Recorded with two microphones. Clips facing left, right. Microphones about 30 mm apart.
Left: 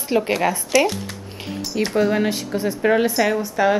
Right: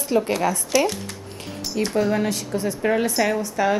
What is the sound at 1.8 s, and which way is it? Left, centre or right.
A woman's voice, centre.